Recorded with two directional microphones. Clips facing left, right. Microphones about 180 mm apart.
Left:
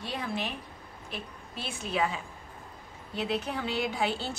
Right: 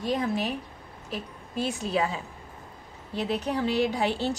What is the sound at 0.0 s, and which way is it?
A woman's voice, 40° right (ahead or behind).